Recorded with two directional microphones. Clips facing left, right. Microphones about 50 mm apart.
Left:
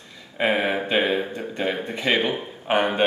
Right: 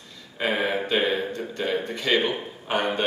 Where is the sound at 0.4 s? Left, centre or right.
Left.